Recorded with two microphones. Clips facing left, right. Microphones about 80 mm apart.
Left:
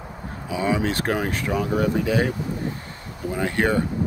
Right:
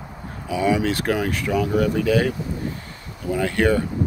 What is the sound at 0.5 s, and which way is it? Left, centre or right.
Speech, left.